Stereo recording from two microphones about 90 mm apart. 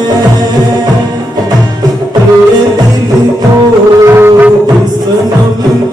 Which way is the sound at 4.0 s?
25° right (ahead or behind).